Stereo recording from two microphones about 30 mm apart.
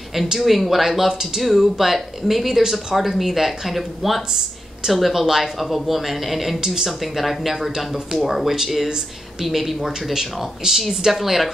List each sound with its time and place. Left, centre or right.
0.4 s speech: centre
6.6 s speech: centre
6.9 s speech: centre
8.8 s speech: right
9.5 s speech: centre
10.6 s speech: right
11.1 s speech: centre